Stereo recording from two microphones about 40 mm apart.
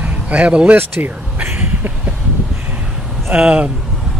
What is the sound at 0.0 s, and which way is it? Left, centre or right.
Speech, right.